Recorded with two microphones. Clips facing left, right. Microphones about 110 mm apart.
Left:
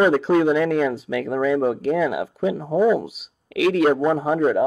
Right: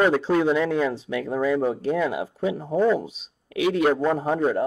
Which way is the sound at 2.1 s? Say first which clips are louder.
Left 3 dB; 90° left.